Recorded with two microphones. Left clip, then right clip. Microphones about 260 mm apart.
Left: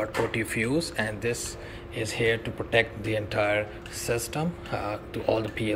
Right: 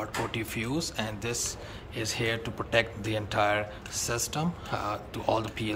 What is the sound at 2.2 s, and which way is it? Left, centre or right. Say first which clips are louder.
Speech: left 7 dB; centre.